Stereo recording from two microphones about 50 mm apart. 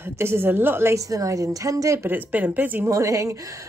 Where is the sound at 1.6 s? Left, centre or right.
Right.